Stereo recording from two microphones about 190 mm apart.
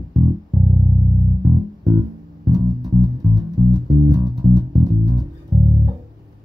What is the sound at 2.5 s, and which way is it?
Music, 20° right (ahead or behind).